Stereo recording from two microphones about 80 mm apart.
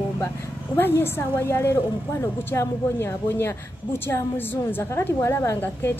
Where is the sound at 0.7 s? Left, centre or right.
Left.